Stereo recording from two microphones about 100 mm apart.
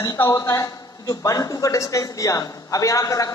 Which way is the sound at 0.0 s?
35° left (ahead or behind).